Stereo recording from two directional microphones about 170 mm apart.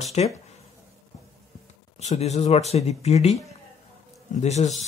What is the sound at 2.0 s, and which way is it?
Speech, 45° left (ahead or behind).